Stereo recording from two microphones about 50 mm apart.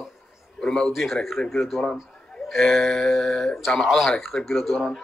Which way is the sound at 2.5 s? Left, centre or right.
Centre.